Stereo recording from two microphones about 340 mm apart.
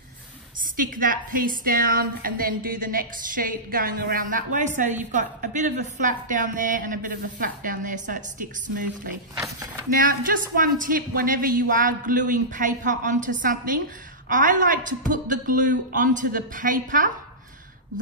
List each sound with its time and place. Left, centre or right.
0.7 s a woman's voice: right
9.8 s a woman's voice: right